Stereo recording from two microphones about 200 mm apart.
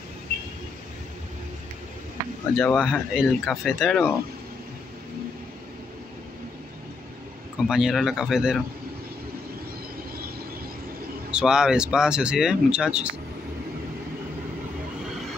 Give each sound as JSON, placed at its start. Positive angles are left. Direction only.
{"t": 2.5, "sound": "speech", "side_deg": 5}
{"t": 7.6, "sound": "speech", "side_deg": 0}
{"t": 11.3, "sound": "speech", "side_deg": -5}